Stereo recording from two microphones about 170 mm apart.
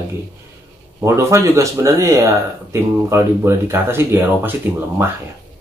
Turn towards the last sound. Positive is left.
turn(degrees=-15)  # may be behind; listen again after turning